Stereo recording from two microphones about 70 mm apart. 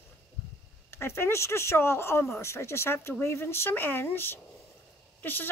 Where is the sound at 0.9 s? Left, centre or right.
Left.